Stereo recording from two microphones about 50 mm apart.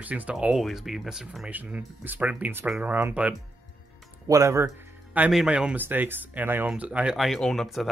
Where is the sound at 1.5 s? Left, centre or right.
Right.